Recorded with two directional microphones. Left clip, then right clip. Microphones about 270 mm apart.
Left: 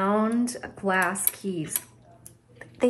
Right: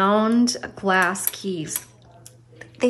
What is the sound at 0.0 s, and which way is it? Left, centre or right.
Speech, centre.